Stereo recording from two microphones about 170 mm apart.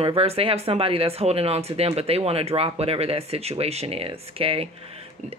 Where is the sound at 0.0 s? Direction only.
35° right (ahead or behind).